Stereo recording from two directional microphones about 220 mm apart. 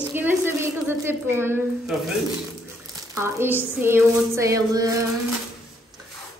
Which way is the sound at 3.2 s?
10° right (ahead or behind).